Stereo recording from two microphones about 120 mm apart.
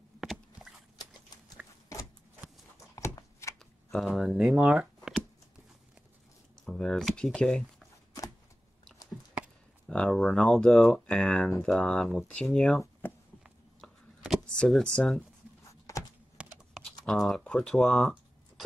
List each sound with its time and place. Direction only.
0.2 s a sound: centre (ahead or behind)
3.0 s shuffling cards: 25° left (ahead or behind)
3.9 s speech: centre (ahead or behind)
6.6 s speech: 5° left (ahead or behind)
9.8 s speech: 5° left (ahead or behind)
13.0 s a sound: 15° left (ahead or behind)
13.7 s a sound: centre (ahead or behind)
14.6 s speech: 5° left (ahead or behind)
15.9 s computer keyboard: 25° left (ahead or behind)
16.4 s computer keyboard: 10° right (ahead or behind)
17.0 s speech: 5° left (ahead or behind)